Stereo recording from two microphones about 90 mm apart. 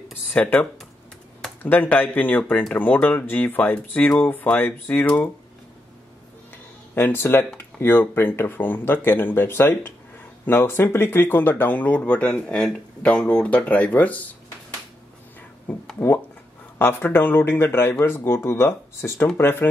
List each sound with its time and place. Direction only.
0.3 s speech: 15° left (ahead or behind)
7.0 s speech: 25° left (ahead or behind)
15.7 s speech: 15° left (ahead or behind)